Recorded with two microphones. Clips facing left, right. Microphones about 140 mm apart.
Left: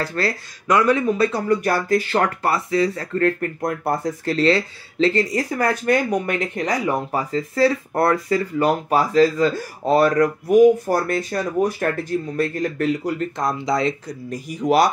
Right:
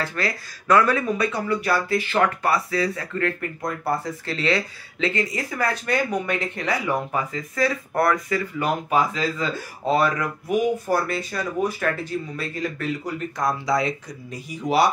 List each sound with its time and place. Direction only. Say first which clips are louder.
0.0 s speech: left 3 dB; 35° left (ahead or behind)
0.7 s speech: left 2 dB; 20° left (ahead or behind)
1.5 s speech: left 3 dB; 45° left (ahead or behind); by 3.1 s 25° left (ahead or behind)
3.2 s speech: left 7 dB; 45° left (ahead or behind)
4.5 s speech: left 5 dB; 30° left (ahead or behind); by 12.7 s 50° left (ahead or behind)
13.4 s speech: even; 25° left (ahead or behind)
14.3 s speech: left 4 dB; 40° left (ahead or behind)